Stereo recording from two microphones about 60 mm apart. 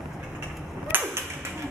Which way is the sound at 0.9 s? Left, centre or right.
Right.